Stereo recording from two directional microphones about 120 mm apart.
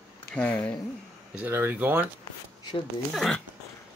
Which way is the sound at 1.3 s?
15° right (ahead or behind).